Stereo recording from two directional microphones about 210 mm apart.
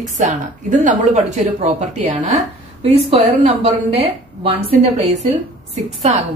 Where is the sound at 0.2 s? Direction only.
35° right (ahead or behind).